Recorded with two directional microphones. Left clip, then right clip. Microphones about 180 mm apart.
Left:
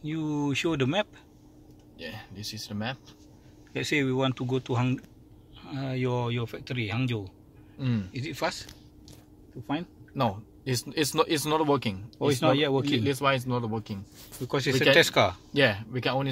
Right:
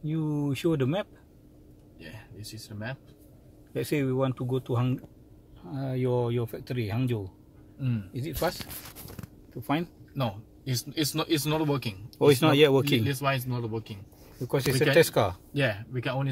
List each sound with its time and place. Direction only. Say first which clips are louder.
0.0 s speech: left 1 dB; 10° right (ahead or behind)
2.0 s speech: left 6 dB; 75° left (ahead or behind)
3.7 s speech: left 2 dB; 10° right (ahead or behind)
10.1 s speech: left 5 dB; 70° left (ahead or behind)
12.2 s speech: right 4 dB; 15° right (ahead or behind)
13.0 s speech: left 3 dB; 80° left
14.5 s speech: left 2 dB; 10° right (ahead or behind)
15.5 s speech: left 5 dB; 85° left